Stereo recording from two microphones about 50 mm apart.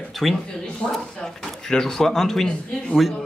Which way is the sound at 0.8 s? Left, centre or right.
Left.